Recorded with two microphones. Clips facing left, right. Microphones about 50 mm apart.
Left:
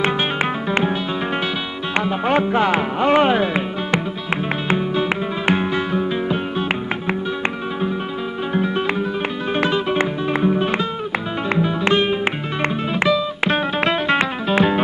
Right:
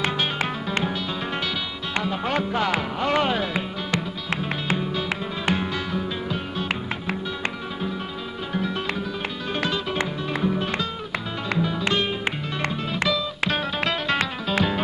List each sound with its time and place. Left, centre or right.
0.0 s music: left
2.0 s music: left
4.6 s music: left
8.5 s music: left